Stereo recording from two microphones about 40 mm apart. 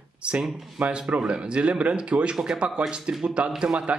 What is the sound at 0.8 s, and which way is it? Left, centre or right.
Speech, right.